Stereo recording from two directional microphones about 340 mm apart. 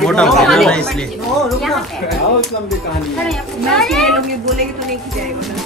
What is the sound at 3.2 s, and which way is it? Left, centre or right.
Speech, centre.